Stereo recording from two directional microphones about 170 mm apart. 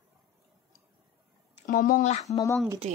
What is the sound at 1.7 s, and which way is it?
Speech, 55° left (ahead or behind).